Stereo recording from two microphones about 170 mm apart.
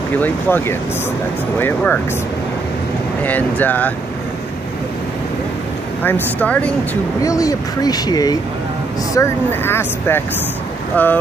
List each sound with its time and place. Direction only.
0.2 s speech: 10° left (ahead or behind)
3.2 s speech: 10° left (ahead or behind)
6.0 s speech: 10° left (ahead or behind)
7.2 s speech: 20° left (ahead or behind)